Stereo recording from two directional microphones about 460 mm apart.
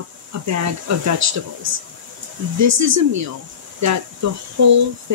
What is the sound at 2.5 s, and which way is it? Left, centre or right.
Speech, right.